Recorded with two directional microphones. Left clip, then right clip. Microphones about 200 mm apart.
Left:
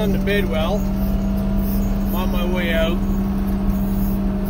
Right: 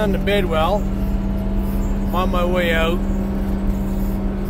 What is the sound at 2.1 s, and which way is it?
Speech, 30° right (ahead or behind).